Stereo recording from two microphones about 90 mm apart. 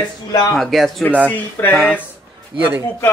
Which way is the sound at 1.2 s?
20° left (ahead or behind).